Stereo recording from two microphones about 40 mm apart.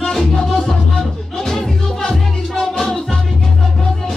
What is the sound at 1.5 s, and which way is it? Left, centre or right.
Music, centre.